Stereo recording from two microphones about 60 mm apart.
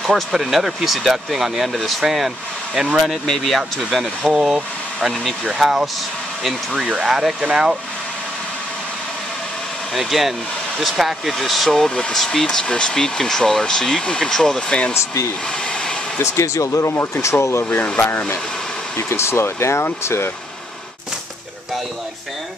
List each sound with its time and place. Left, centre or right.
0.0 s speech: centre
3.1 s speech: centre
9.9 s speech: centre
15.6 s a sound: centre
16.2 s speech: left
16.9 s speech: left
17.6 s speech: left
18.9 s speech: left